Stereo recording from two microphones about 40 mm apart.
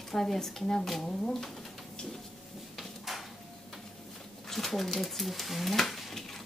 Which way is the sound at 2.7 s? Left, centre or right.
Centre.